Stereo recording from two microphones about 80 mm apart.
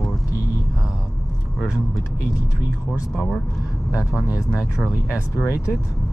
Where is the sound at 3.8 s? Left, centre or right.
Left.